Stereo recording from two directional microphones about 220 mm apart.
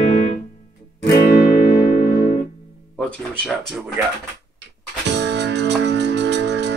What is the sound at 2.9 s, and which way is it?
Speech, 5° left (ahead or behind).